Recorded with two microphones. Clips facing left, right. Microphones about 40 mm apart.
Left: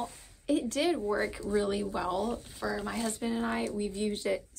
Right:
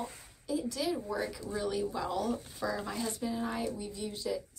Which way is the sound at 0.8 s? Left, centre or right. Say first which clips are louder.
Left 5 dB; left.